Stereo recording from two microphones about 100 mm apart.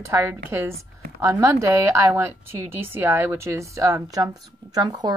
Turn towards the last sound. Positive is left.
turn(degrees=-40)  # may be behind; listen again after turning